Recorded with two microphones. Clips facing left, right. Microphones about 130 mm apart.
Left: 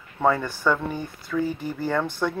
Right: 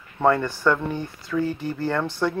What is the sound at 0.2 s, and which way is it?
Speech, 5° left (ahead or behind).